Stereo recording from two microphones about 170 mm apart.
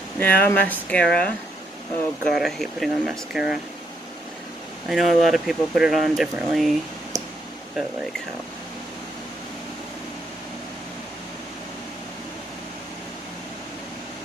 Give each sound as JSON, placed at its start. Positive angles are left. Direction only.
{"t": 0.2, "sound": "speech", "side_deg": 10}
{"t": 4.8, "sound": "speech", "side_deg": 0}